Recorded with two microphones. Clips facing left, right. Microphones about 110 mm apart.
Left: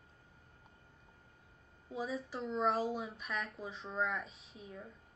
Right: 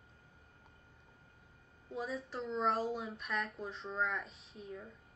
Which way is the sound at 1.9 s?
Centre (ahead or behind).